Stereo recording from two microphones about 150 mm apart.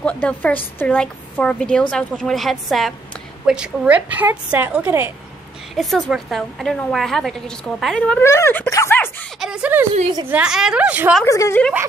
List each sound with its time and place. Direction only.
0.0 s a woman's voice: 10° left (ahead or behind); by 5.1 s 15° right (ahead or behind)
5.8 s a woman's voice: centre (ahead or behind)
9.4 s a sound: 5° right (ahead or behind)
10.3 s a woman's voice: 5° right (ahead or behind)
11.2 s a woman's voice: 20° left (ahead or behind)